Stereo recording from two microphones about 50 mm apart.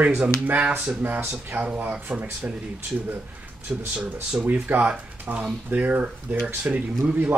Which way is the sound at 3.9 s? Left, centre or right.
Centre.